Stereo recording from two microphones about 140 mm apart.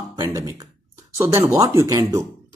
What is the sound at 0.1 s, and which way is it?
A man's voice, 25° right (ahead or behind).